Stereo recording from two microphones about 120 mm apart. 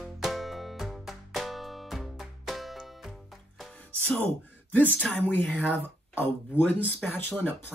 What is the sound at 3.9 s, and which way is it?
Music, 10° left (ahead or behind).